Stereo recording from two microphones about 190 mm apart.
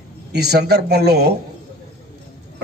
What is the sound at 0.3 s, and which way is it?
A man's voice, 60° right (ahead or behind).